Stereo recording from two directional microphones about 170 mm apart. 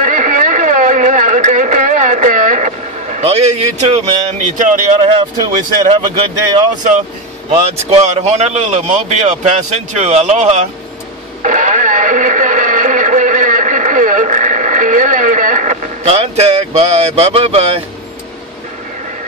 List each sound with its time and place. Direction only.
0.0 s a sound: 50° right (ahead or behind)
4.6 s speech: 50° right (ahead or behind)
5.0 s speech: 30° right (ahead or behind)
7.5 s speech: 40° right (ahead or behind)
11.4 s radio: 50° right (ahead or behind)